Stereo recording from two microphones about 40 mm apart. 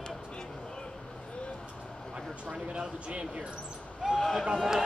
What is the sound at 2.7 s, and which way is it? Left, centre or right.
Speech, right.